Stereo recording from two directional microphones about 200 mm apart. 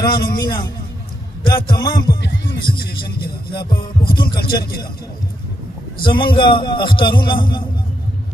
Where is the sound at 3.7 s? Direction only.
25° left (ahead or behind).